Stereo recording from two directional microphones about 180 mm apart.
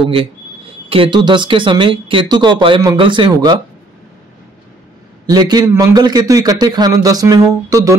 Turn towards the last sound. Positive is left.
turn(degrees=-20)  # may be behind; listen again after turning